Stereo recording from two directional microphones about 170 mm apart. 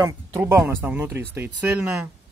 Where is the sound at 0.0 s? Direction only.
15° right (ahead or behind).